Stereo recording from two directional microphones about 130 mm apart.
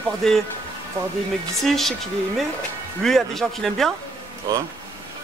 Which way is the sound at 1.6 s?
Centre (ahead or behind).